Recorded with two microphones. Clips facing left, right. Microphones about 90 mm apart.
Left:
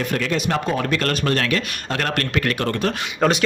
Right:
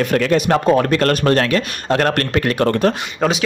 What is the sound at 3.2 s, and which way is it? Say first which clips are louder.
Speech: even; 5° right (ahead or behind).